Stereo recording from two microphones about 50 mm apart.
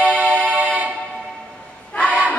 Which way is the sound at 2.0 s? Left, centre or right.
Right.